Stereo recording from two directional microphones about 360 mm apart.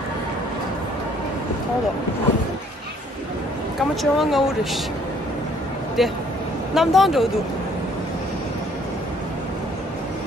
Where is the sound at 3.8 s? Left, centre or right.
Centre.